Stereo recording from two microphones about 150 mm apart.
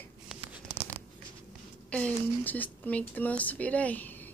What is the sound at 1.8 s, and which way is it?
A woman's voice, 10° left (ahead or behind).